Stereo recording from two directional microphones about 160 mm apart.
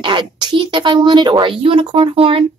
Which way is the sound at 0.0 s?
30° right (ahead or behind).